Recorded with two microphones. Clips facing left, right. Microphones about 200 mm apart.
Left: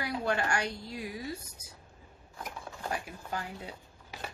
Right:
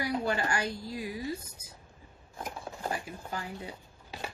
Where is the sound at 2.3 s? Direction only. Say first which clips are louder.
Right 3 dB; 25° right (ahead or behind).